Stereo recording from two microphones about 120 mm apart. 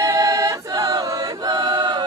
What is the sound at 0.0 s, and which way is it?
Choir, 25° right (ahead or behind).